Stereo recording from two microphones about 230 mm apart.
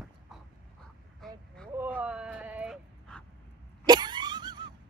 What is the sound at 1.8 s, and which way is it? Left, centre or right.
Dog, centre.